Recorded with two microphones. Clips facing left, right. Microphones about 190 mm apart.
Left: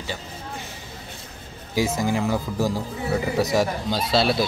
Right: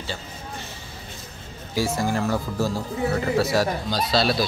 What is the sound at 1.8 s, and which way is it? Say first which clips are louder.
A man's voice: left 1 dB; 15° left (ahead or behind).